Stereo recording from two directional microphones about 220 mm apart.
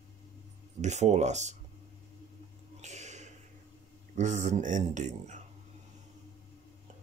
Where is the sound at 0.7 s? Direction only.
30° right (ahead or behind).